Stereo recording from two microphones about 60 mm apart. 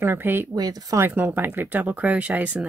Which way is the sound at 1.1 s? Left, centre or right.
Right.